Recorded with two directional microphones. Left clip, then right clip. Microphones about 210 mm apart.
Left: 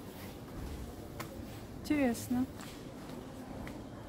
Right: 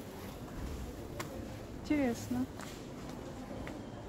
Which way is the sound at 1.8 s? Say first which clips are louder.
Left 1 dB; 45° left (ahead or behind).